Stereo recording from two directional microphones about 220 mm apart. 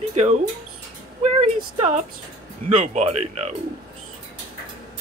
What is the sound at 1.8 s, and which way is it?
Speech, 30° right (ahead or behind).